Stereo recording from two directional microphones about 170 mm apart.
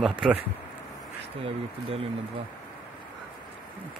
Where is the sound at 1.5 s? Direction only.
35° right (ahead or behind).